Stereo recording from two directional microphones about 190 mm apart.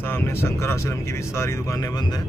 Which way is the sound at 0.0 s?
10° left (ahead or behind).